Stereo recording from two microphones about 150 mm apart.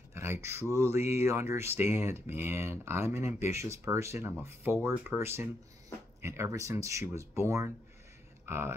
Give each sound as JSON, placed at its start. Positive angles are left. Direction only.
{"t": 0.1, "sound": "speech", "side_deg": -15}